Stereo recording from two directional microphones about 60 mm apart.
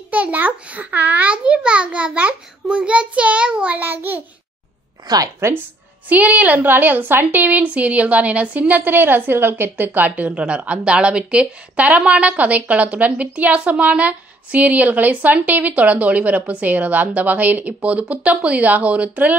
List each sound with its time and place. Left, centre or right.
0.1 s a woman's voice: right
3.8 s a child's voice: right
5.0 s a woman's voice: right
6.0 s a woman's voice: right